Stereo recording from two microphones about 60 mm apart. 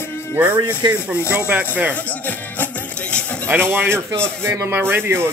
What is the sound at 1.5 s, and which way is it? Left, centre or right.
Speech, right.